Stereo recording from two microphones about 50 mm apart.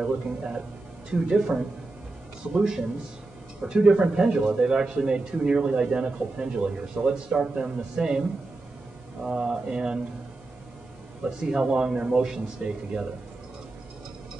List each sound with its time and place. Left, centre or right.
0.0 s a man's voice: centre
2.5 s speech: centre
9.3 s speech: centre
11.4 s speech: centre